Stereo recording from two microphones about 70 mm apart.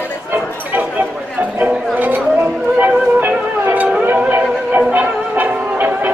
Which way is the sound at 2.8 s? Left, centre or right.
Right.